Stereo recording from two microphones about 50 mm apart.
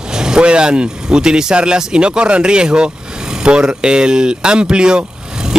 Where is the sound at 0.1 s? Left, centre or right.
Centre.